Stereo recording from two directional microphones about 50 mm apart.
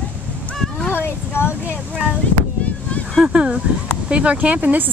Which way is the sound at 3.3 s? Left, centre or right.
Centre.